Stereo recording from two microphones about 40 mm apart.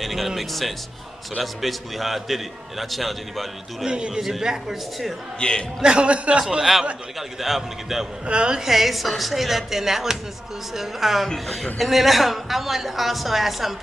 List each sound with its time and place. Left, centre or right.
0.0 s music: centre
0.4 s a man's voice: centre
3.8 s a man's voice: centre
5.4 s speech: left
5.8 s speech: right
6.6 s a man's voice: centre
8.3 s speech: right
8.5 s a man's voice: centre